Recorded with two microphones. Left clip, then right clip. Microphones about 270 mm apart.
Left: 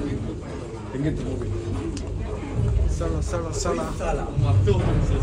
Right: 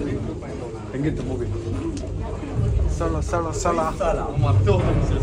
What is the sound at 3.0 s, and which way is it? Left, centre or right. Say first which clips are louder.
A man's voice: right 5 dB; centre.